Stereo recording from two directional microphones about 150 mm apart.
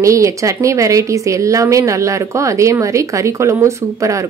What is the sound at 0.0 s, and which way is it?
Speech, 20° right (ahead or behind).